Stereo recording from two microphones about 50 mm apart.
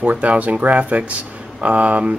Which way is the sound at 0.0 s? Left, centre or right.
Right.